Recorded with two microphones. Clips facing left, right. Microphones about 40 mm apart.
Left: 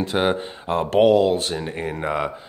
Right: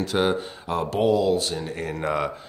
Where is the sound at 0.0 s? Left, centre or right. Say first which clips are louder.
Left 2 dB; left.